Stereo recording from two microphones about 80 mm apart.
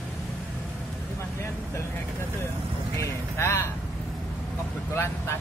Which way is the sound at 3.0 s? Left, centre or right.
Left.